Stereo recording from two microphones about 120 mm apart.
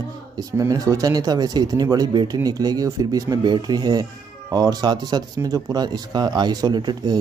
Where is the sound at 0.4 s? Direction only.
30° right (ahead or behind).